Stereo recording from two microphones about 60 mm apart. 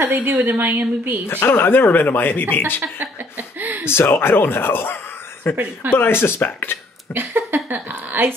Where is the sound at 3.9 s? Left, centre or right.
Left.